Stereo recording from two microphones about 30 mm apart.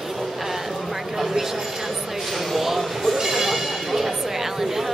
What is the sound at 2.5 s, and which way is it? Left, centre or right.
Speech, centre.